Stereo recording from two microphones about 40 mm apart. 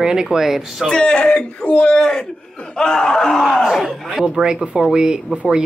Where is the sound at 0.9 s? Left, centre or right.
Left.